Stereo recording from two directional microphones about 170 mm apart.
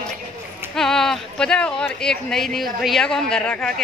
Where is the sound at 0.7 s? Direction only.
5° left (ahead or behind).